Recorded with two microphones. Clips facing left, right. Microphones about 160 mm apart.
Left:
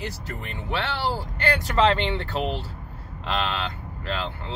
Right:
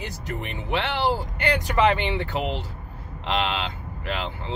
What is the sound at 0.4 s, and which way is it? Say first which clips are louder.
Speech: right 2 dB; 20° right (ahead or behind).